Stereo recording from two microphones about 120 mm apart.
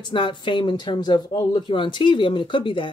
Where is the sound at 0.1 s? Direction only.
40° left (ahead or behind).